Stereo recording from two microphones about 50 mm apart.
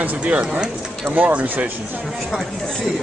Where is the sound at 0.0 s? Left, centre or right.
Right.